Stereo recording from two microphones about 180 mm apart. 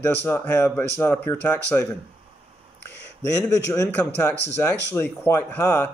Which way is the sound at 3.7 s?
10° left (ahead or behind).